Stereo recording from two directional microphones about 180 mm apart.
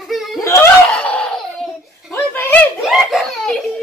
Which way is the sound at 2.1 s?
10° left (ahead or behind).